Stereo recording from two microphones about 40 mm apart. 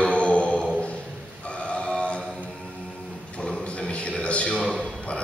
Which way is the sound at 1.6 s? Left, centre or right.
Left.